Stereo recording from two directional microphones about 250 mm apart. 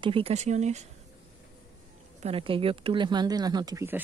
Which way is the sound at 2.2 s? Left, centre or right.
Right.